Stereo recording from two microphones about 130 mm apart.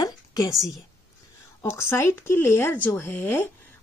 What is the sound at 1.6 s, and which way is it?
Speech, 20° left (ahead or behind).